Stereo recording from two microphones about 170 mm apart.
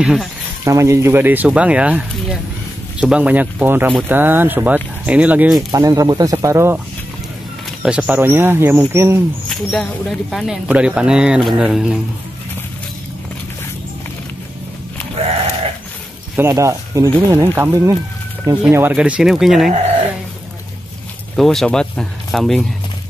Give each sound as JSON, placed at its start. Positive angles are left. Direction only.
{"t": 0.0, "sound": "speech", "side_deg": -5}
{"t": 0.7, "sound": "speech", "side_deg": -15}
{"t": 5.7, "sound": "speech", "side_deg": -20}
{"t": 7.8, "sound": "speech", "side_deg": -10}
{"t": 9.5, "sound": "speech", "side_deg": 0}
{"t": 16.3, "sound": "speech", "side_deg": -15}
{"t": 21.4, "sound": "speech", "side_deg": 0}